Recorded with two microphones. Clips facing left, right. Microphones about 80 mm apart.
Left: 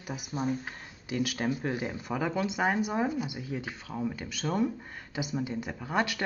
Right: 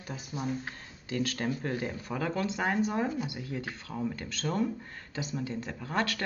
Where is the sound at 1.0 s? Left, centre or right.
Centre.